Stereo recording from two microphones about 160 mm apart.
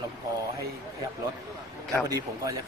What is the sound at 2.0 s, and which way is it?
Speech, 20° right (ahead or behind).